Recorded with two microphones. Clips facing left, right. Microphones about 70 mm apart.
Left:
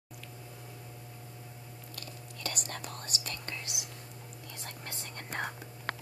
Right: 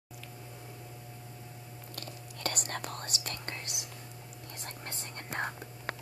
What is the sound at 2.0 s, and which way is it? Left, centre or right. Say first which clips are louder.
Speech: right 2 dB; right.